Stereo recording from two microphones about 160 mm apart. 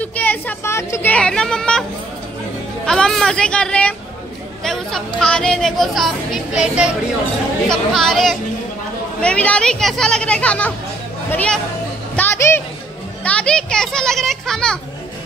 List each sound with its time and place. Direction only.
0.0 s speech: 10° left (ahead or behind)
2.9 s a woman's voice: centre (ahead or behind)